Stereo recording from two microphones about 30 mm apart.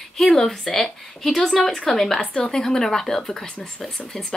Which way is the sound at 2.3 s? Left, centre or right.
Left.